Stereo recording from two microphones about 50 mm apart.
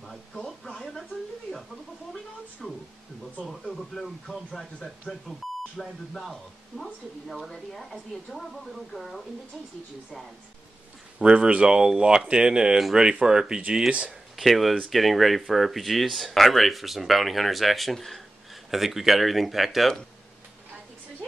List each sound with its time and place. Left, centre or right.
2.6 s speech: centre
6.8 s speech: centre
11.1 s speech: centre
14.3 s speech: centre